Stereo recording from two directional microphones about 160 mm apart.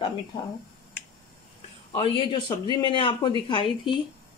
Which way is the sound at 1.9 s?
30° left (ahead or behind).